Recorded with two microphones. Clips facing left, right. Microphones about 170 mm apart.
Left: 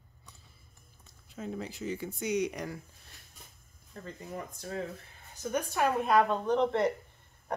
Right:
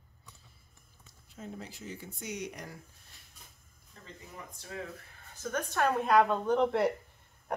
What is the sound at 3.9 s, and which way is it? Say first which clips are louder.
Speech: left 10 dB; 45° left (ahead or behind).